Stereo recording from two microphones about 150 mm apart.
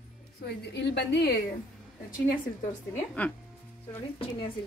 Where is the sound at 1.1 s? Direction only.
90° left.